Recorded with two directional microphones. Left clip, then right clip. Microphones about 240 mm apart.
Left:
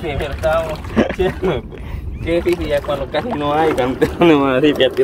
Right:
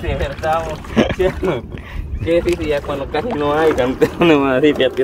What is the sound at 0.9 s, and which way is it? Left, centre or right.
Speech, centre.